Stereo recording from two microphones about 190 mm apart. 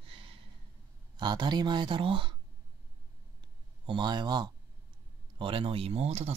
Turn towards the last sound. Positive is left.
turn(degrees=-35)  # may be behind; listen again after turning